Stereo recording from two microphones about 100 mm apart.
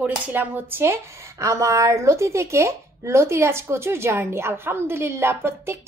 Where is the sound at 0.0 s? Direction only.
20° right (ahead or behind).